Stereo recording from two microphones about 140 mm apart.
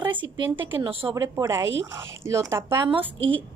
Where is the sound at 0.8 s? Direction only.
40° right (ahead or behind).